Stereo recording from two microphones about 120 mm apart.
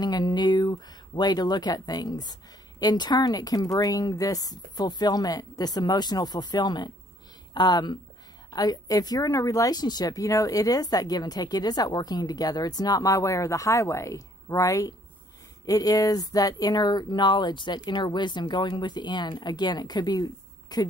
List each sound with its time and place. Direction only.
0.0 s speech: 35° left (ahead or behind)